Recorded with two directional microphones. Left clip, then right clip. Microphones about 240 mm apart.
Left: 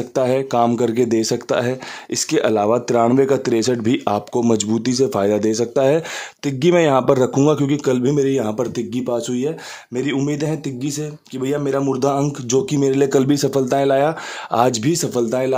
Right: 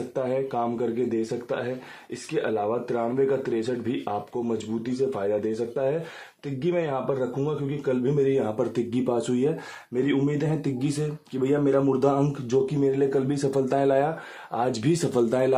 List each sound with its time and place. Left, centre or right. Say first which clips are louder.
0.1 s speech: left 10 dB; left
8.5 s speech: left 4 dB; left
9.9 s speech: left 4 dB; left
11.4 s speech: left 3 dB; left
14.7 s speech: left 5 dB; left